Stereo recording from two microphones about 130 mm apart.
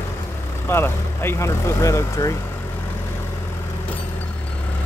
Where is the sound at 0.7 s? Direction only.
20° left (ahead or behind).